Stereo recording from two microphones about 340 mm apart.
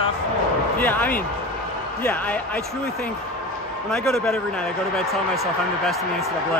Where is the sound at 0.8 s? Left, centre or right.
Centre.